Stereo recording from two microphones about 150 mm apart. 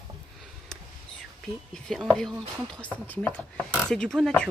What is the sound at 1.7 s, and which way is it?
Speech, 5° left (ahead or behind).